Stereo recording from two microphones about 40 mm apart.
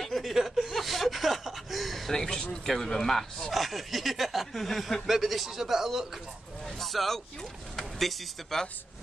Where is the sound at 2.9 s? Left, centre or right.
Centre.